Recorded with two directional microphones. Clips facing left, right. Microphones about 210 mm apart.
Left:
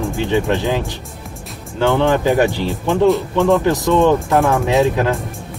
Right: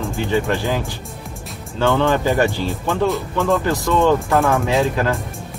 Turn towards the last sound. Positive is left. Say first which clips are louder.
# left 3 dB
turn(degrees=20)  # may be behind; listen again after turning